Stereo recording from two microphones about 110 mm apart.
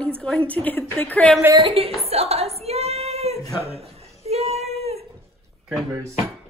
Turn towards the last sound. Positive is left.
turn(degrees=-25)  # may be behind; listen again after turning